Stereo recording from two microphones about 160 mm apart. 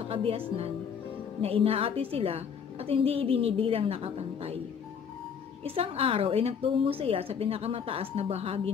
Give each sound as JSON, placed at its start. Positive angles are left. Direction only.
{"t": 0.1, "sound": "a woman's voice", "side_deg": -35}
{"t": 1.4, "sound": "a woman's voice", "side_deg": -35}
{"t": 5.6, "sound": "a woman's voice", "side_deg": -35}